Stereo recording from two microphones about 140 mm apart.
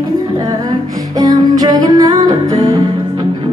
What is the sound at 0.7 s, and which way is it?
Music, 25° right (ahead or behind).